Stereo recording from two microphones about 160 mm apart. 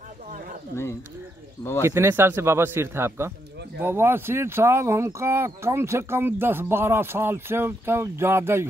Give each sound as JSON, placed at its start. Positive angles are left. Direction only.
{"t": 1.8, "sound": "speech", "side_deg": -15}